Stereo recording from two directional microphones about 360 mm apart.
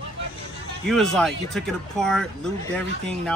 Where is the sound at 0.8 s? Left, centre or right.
Centre.